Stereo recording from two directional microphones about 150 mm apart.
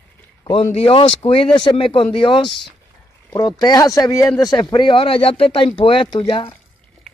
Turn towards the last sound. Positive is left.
turn(degrees=35)  # may be behind; listen again after turning